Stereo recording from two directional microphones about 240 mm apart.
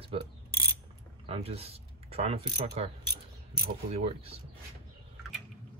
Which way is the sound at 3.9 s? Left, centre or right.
Right.